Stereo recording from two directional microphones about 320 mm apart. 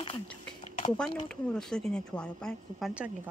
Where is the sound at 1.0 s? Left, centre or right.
Centre.